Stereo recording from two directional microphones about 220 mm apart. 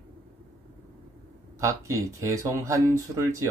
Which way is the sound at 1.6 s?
15° right (ahead or behind).